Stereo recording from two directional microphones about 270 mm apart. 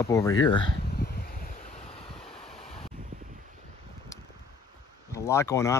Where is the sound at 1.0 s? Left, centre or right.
Left.